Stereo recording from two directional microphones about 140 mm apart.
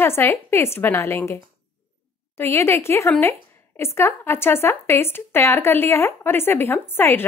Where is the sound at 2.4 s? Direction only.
15° left (ahead or behind).